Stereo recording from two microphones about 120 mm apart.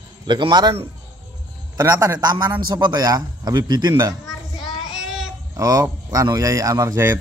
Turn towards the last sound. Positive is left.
turn(degrees=-25)  # may be behind; listen again after turning